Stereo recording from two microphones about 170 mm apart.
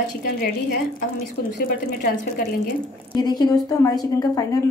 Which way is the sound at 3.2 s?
25° left (ahead or behind).